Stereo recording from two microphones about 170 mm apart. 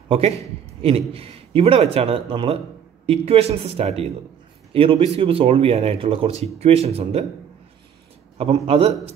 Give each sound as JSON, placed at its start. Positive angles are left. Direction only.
{"t": 0.1, "sound": "a man's voice", "side_deg": -35}
{"t": 8.4, "sound": "a man's voice", "side_deg": -35}